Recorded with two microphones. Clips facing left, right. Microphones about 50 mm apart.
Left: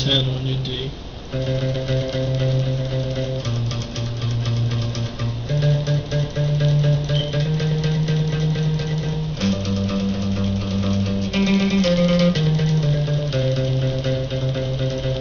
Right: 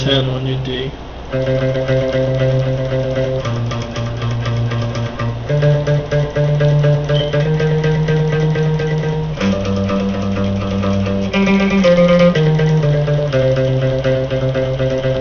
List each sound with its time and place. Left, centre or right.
0.0 s a man's voice: right
1.3 s music: right
5.9 s music: right